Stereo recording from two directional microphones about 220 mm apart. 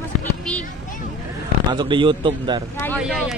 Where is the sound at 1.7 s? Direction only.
20° right (ahead or behind).